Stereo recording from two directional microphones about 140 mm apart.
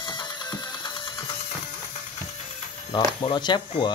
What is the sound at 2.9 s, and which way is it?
Speech, 35° left (ahead or behind).